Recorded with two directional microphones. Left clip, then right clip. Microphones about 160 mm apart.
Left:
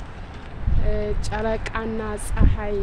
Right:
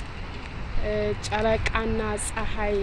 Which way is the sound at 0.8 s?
10° left (ahead or behind).